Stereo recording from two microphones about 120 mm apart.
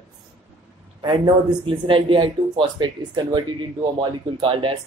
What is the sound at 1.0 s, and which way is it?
Speech, 45° right (ahead or behind).